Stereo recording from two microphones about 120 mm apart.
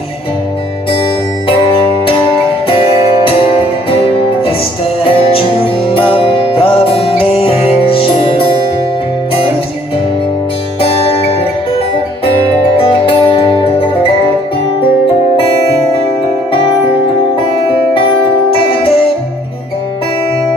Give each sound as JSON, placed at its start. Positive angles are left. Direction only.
{"t": 1.6, "sound": "music", "side_deg": 45}
{"t": 5.0, "sound": "music", "side_deg": 50}
{"t": 10.8, "sound": "music", "side_deg": 50}
{"t": 12.7, "sound": "music", "side_deg": 50}